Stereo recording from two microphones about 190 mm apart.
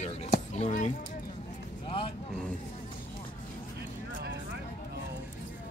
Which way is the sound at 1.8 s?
30° left (ahead or behind).